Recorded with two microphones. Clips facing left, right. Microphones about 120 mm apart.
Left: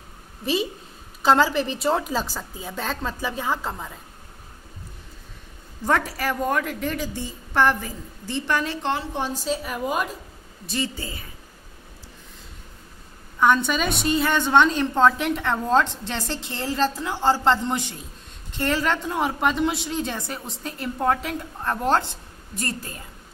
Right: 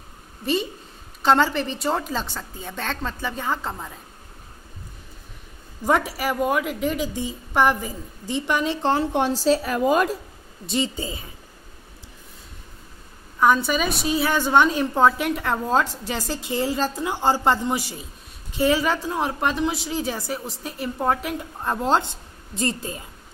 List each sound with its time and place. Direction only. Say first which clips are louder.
1.2 s a woman's voice: even; centre (ahead or behind)
5.9 s a woman's voice: right 2 dB; 10° right (ahead or behind)
9.1 s a woman's voice: right 7 dB; 75° right (ahead or behind)
10.7 s speech: right 3 dB; 20° right (ahead or behind)
13.4 s a woman's voice: right 1 dB; 5° right (ahead or behind)
21.6 s a woman's voice: right 1 dB; 15° right (ahead or behind)